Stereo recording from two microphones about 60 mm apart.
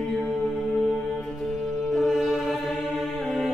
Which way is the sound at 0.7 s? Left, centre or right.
Centre.